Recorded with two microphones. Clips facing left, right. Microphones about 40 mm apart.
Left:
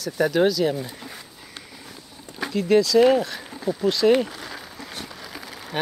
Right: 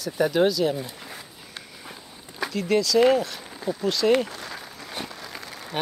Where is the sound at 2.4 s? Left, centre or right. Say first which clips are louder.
Left 4 dB; centre.